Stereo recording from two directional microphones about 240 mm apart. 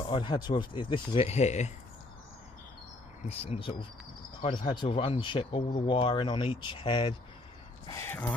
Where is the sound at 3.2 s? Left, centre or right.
Left.